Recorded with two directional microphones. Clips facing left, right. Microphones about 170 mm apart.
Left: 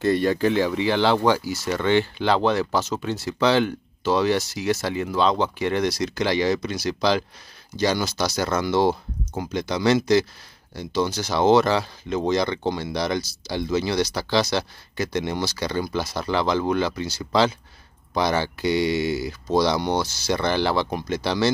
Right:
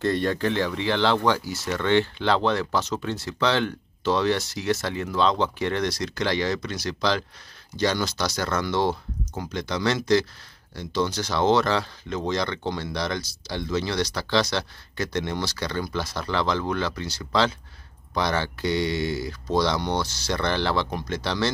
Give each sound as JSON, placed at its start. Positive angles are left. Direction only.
{"t": 0.0, "sound": "speech", "side_deg": 10}